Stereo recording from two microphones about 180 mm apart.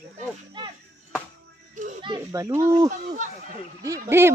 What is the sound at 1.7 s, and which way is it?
Children playing, 45° right (ahead or behind).